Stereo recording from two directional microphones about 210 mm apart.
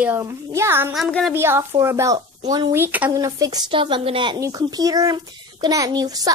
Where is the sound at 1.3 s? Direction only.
10° right (ahead or behind).